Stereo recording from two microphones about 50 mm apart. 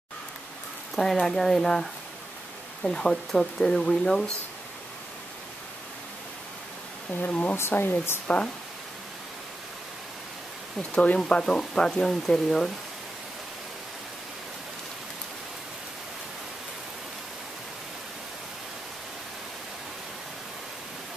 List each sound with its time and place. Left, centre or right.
0.9 s speech: centre
7.2 s speech: left
7.7 s speech: left
8.3 s speech: left
10.8 s speech: left
11.1 s speech: centre